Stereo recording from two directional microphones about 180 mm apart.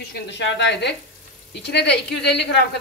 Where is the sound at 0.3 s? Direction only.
75° left (ahead or behind).